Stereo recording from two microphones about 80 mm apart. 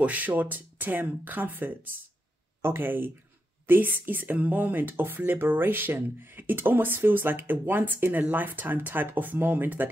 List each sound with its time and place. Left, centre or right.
0.0 s speech: centre